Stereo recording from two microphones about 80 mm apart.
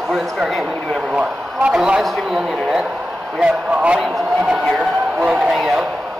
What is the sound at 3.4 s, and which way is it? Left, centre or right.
Speech, centre.